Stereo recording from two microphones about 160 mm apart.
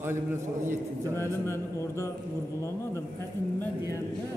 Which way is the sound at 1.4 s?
15° left (ahead or behind).